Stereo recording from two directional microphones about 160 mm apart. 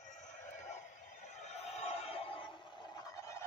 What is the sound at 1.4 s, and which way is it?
Music, 40° left (ahead or behind).